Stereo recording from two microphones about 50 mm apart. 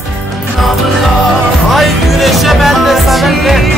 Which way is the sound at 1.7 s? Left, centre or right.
Centre.